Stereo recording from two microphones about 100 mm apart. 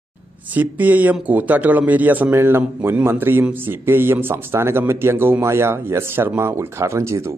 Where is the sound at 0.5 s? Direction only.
15° right (ahead or behind).